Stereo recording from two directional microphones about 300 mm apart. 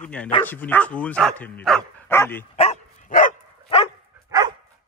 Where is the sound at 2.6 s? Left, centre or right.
Left.